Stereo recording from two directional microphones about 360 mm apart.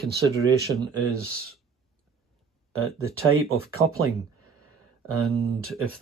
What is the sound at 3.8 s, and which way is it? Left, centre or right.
Speech, right.